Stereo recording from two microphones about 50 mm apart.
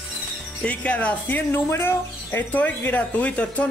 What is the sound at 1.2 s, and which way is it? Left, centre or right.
Speech, left.